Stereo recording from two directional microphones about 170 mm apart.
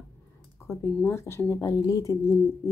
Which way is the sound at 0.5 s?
15° left (ahead or behind).